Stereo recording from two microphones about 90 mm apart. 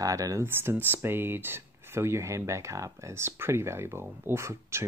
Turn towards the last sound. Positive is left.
turn(degrees=-30)  # may be behind; listen again after turning